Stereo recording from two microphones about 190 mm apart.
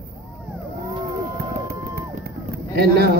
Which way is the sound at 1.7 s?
55° right (ahead or behind).